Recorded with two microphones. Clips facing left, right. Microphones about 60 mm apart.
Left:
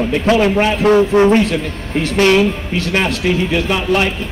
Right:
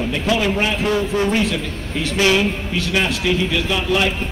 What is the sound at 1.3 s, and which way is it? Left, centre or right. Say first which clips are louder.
Speech: left 6 dB; left.